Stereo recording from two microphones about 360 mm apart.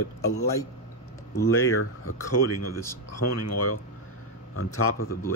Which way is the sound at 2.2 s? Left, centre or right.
Left.